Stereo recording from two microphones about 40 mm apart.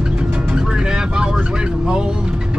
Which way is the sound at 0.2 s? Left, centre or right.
Right.